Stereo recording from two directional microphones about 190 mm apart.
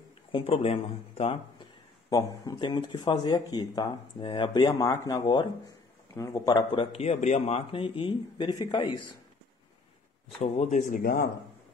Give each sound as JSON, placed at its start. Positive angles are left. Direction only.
{"t": 0.3, "sound": "speech", "side_deg": 30}
{"t": 10.4, "sound": "speech", "side_deg": 35}